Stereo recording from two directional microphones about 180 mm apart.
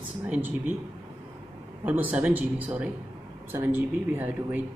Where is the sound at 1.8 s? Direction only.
10° right (ahead or behind).